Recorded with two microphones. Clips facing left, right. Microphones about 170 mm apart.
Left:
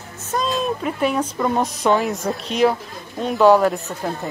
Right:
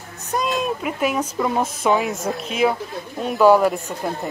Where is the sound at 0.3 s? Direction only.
20° right (ahead or behind).